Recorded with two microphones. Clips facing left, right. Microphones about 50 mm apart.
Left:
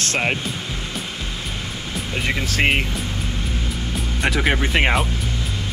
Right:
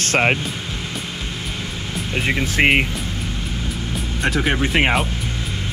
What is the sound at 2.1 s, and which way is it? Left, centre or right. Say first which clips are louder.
Speech: right 3 dB; centre.